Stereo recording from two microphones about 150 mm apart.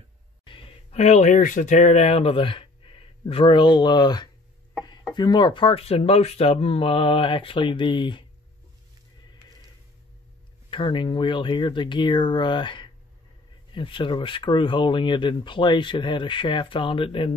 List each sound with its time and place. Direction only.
0.5 s speech: 40° left (ahead or behind)
10.7 s speech: 35° left (ahead or behind)